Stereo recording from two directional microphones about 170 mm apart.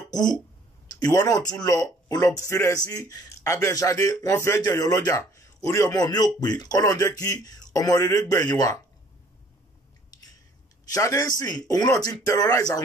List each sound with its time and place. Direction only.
0.8 s speech: 20° left (ahead or behind)
10.9 s speech: 20° left (ahead or behind)